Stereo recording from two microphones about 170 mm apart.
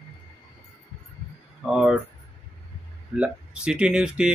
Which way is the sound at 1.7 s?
5° right (ahead or behind).